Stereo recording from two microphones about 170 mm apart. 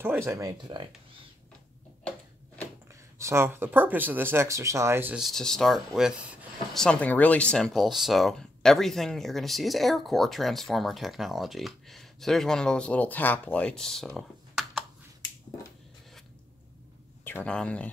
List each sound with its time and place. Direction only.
0.0 s speech: 15° right (ahead or behind)
3.2 s speech: 15° right (ahead or behind)
5.2 s speech: 5° left (ahead or behind)
17.2 s speech: 10° left (ahead or behind)